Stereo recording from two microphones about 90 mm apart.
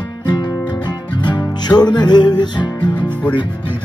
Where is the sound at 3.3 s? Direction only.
55° left (ahead or behind).